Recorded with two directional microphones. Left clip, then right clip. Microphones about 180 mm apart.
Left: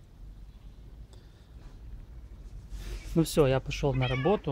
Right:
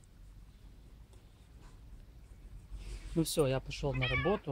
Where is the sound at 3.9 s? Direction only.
15° right (ahead or behind).